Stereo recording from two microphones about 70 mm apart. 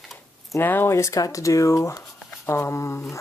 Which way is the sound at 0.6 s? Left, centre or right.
Left.